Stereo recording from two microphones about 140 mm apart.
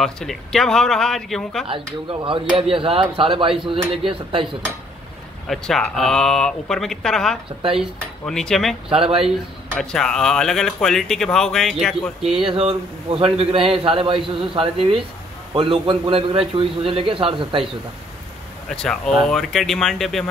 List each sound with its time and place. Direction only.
0.0 s speech: 5° left (ahead or behind)
1.7 s speech: 40° right (ahead or behind)
5.5 s speech: centre (ahead or behind)
8.8 s speech: 40° right (ahead or behind)
9.8 s speech: 5° left (ahead or behind)
12.4 s speech: 45° right (ahead or behind)
18.7 s speech: 5° left (ahead or behind)